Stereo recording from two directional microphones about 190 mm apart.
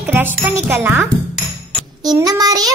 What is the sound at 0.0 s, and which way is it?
A child's voice, 10° right (ahead or behind).